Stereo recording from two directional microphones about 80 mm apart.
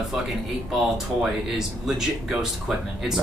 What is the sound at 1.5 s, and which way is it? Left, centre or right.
Speech, centre.